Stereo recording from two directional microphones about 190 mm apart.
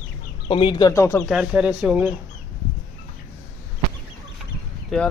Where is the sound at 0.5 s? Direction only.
25° left (ahead or behind).